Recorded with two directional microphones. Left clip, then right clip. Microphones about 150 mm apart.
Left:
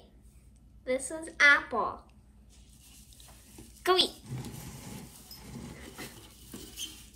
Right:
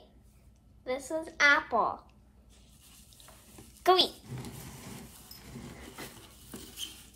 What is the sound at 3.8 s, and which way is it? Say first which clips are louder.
Speech: right 2 dB; 45° right (ahead or behind).